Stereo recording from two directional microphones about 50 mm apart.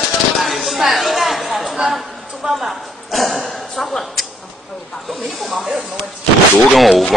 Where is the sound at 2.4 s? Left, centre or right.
Right.